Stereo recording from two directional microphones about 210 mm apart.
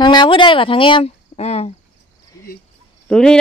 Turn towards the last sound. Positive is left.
turn(degrees=5)  # may be behind; listen again after turning